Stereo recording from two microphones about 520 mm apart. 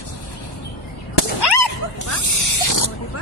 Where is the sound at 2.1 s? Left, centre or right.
Left.